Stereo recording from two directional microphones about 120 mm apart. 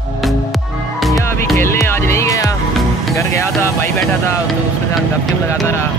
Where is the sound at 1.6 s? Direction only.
20° left (ahead or behind).